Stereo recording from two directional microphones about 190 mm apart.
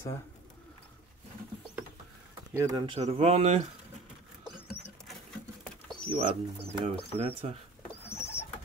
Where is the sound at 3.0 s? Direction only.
35° right (ahead or behind).